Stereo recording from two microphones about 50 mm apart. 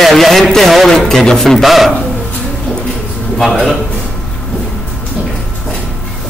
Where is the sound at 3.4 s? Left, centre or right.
Centre.